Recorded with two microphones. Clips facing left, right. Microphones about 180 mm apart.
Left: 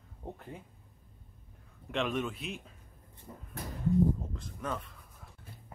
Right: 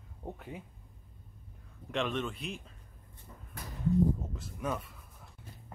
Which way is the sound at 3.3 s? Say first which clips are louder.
Left 6 dB; 25° left (ahead or behind).